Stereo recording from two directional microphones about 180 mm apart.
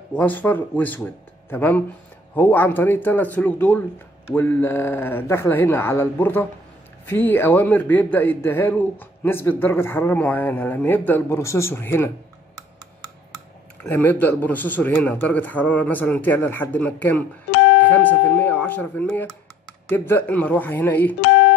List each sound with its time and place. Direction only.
0.1 s a man's voice: 10° left (ahead or behind)
13.8 s a man's voice: 10° left (ahead or behind)
17.5 s guitar: 75° left (ahead or behind)
17.7 s a man's voice: 10° left (ahead or behind)
21.2 s music: 70° left (ahead or behind)